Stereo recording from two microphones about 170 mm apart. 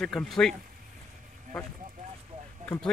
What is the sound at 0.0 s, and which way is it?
Speech, centre (ahead or behind).